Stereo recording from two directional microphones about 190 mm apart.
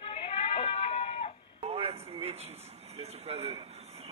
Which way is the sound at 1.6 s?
30° right (ahead or behind).